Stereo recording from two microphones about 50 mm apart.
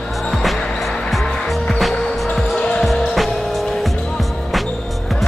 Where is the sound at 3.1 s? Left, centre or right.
Centre.